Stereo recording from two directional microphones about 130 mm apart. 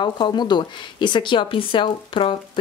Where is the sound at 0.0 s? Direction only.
35° left (ahead or behind).